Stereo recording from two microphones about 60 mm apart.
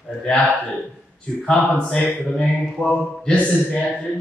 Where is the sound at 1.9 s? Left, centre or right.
Centre.